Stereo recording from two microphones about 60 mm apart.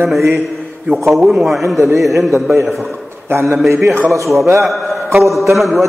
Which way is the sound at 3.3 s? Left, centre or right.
Right.